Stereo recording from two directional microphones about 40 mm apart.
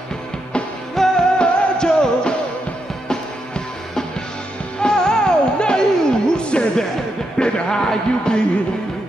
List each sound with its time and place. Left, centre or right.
0.9 s music: centre
1.4 s music: left